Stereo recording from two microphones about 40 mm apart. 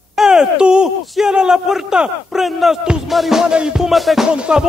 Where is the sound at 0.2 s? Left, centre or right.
Centre.